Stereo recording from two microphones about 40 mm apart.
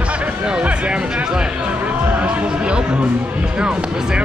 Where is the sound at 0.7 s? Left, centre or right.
Right.